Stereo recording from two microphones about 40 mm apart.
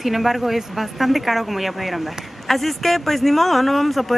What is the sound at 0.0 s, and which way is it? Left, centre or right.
Speech, centre.